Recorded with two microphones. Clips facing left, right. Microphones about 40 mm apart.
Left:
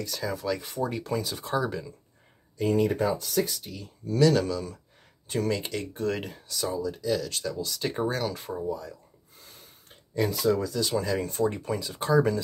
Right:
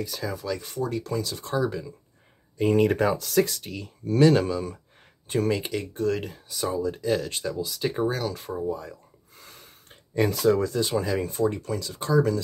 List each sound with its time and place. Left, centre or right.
0.0 s speech: centre
2.7 s speech: right
3.0 s speech: right
4.1 s speech: right
5.3 s speech: centre
5.9 s speech: centre
6.7 s speech: right
7.3 s speech: right
7.6 s speech: centre
8.6 s speech: right
10.3 s speech: right
10.8 s speech: right
11.1 s speech: centre
11.4 s speech: centre